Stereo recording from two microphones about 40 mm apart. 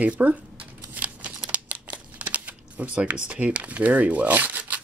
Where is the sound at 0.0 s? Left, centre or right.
Right.